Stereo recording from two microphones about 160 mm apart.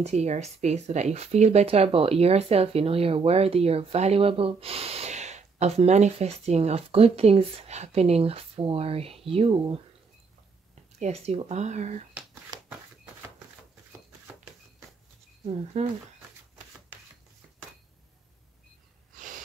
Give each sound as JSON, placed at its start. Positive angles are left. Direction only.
{"t": 0.0, "sound": "speech", "side_deg": -45}
{"t": 11.0, "sound": "speech", "side_deg": -40}
{"t": 15.4, "sound": "speech", "side_deg": -40}
{"t": 19.1, "sound": "snort", "side_deg": -55}